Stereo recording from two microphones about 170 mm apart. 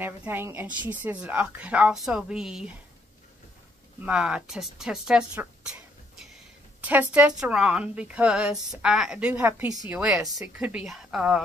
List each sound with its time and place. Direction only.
0.0 s a woman's voice: 10° right (ahead or behind)
4.0 s a woman's voice: 5° right (ahead or behind)